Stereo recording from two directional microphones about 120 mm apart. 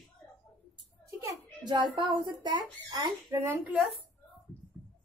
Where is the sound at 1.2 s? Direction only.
40° right (ahead or behind).